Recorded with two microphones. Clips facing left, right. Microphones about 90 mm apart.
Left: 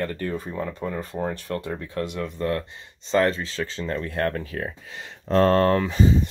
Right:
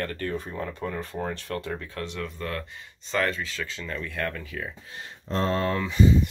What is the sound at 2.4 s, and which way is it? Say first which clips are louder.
Speech: left 7 dB; 30° left (ahead or behind).